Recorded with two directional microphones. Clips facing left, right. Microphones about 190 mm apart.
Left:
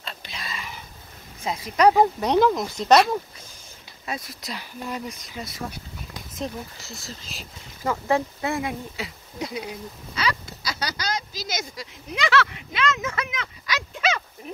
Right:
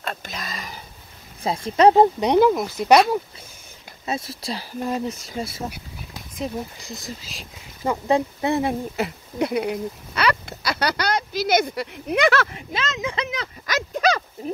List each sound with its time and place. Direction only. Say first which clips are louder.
0.0 s a sound: right 6 dB; 50° right (ahead or behind)
1.5 s speech: right 3 dB; 35° right (ahead or behind)
2.1 s speech: right 3 dB; 10° right (ahead or behind)
4.0 s speech: right 5 dB; 25° right (ahead or behind)
6.8 s speech: right 4 dB; 15° right (ahead or behind)
8.9 s speech: right 9 dB; 60° right (ahead or behind); by 12.8 s 45° right (ahead or behind)
12.8 s speech: left 2 dB; 20° right (ahead or behind)
13.3 s a sound: right 4 dB; 40° right (ahead or behind)